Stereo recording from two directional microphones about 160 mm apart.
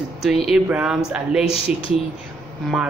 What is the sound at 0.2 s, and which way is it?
Speech, centre (ahead or behind).